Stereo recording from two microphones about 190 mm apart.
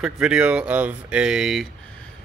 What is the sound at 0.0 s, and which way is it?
Speech, 5° right (ahead or behind).